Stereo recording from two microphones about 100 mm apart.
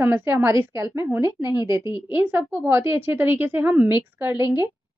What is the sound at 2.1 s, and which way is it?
A woman's voice, 20° right (ahead or behind).